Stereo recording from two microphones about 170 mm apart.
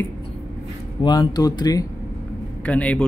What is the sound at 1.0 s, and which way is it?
Speech, 25° left (ahead or behind).